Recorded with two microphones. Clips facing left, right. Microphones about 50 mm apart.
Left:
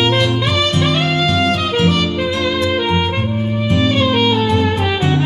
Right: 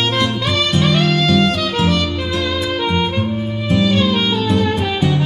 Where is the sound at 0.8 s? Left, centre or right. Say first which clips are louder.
Even; left.